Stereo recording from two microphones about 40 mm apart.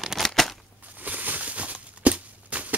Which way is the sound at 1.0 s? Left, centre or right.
Right.